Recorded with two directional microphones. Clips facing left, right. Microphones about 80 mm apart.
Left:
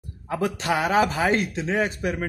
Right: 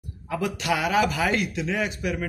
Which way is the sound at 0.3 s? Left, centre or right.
Left.